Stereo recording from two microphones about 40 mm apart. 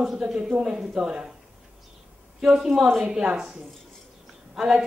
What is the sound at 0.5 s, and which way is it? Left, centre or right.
Speech, right.